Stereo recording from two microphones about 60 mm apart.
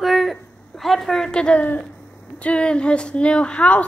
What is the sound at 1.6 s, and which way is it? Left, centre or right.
Speech, left.